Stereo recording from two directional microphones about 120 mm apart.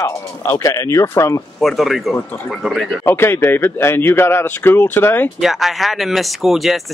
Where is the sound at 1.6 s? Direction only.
Centre (ahead or behind).